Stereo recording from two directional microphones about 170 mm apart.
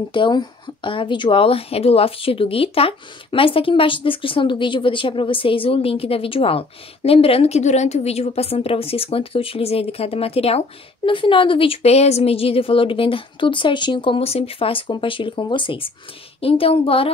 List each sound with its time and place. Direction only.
0.1 s speech: 25° left (ahead or behind)